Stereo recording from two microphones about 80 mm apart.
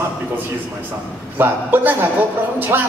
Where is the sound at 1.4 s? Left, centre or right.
Right.